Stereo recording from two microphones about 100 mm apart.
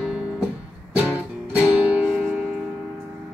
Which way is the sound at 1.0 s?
10° right (ahead or behind).